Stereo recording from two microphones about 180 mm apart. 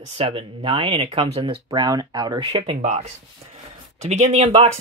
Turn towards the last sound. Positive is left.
turn(degrees=-35)  # may be behind; listen again after turning